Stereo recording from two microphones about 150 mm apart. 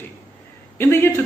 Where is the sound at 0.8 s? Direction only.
15° left (ahead or behind).